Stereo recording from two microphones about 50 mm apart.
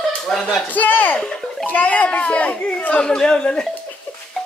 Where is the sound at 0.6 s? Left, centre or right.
Left.